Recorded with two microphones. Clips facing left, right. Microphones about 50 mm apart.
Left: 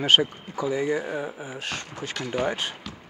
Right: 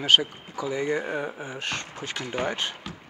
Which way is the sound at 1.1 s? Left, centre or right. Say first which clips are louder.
Even; centre.